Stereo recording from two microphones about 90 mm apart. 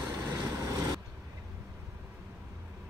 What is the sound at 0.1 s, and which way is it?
Vehicle, 35° right (ahead or behind).